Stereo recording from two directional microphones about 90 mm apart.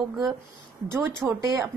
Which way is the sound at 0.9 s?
20° right (ahead or behind).